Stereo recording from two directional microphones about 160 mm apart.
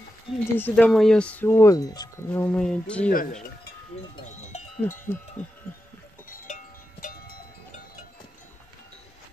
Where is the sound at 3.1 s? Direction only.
60° left (ahead or behind).